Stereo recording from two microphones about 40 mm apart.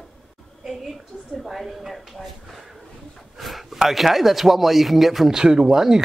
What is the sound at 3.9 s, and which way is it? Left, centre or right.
Speech, centre.